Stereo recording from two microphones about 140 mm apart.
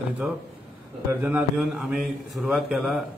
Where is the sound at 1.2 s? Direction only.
5° right (ahead or behind).